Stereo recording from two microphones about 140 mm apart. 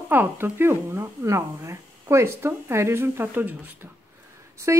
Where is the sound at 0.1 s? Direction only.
15° right (ahead or behind).